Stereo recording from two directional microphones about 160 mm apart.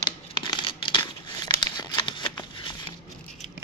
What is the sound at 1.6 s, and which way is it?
Crumpling, 30° left (ahead or behind).